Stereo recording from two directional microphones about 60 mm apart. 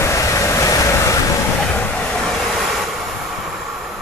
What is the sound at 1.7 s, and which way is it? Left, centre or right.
Train, left.